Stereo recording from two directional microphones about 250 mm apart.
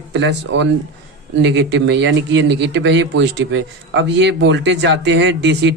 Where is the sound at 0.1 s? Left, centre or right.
Right.